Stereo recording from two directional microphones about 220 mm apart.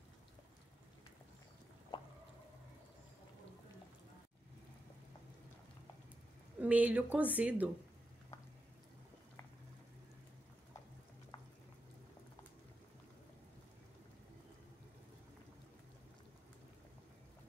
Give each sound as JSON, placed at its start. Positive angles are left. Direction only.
{"t": 1.9, "sound": "drip", "side_deg": 20}
{"t": 6.6, "sound": "speech", "side_deg": -5}